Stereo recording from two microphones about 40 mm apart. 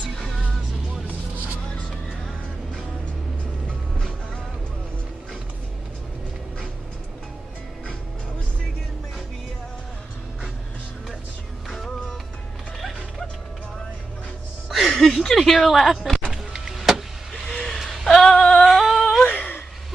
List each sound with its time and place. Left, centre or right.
11.7 s music: centre
14.7 s music: centre
15.1 s speech: centre
16.3 s power windows: centre
16.7 s vehicle: centre
17.3 s vehicle: left
18.0 s female singing: centre
19.2 s a sound: left